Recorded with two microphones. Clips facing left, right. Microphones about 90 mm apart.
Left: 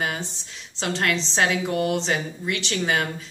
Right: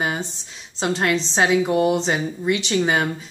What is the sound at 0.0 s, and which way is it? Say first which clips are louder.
Speech: right 3 dB; 20° right (ahead or behind).